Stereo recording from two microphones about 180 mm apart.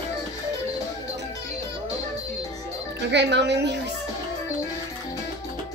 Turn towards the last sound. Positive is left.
turn(degrees=-70)  # may be behind; listen again after turning